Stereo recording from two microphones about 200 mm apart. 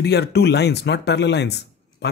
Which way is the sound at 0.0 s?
55° left (ahead or behind).